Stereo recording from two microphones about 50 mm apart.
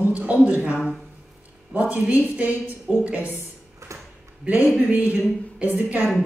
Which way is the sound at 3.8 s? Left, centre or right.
Right.